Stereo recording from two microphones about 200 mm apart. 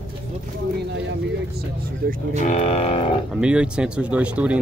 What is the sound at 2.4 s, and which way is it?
Speech, 35° left (ahead or behind).